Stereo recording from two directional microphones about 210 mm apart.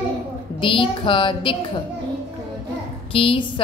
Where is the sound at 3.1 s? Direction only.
25° left (ahead or behind).